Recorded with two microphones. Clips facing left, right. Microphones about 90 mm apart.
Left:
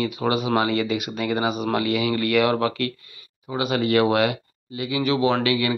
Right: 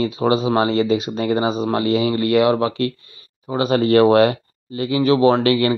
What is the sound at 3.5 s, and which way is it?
Speech, 35° right (ahead or behind).